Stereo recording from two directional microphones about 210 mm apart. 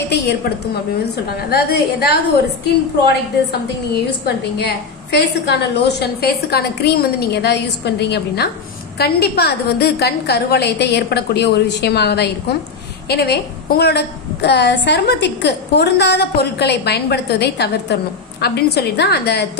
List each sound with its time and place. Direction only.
1.0 s a woman's voice: 50° left (ahead or behind)